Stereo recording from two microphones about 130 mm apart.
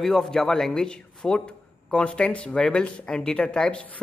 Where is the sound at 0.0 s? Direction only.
5° left (ahead or behind).